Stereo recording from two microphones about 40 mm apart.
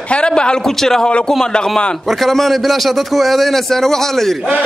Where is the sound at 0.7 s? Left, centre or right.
Centre.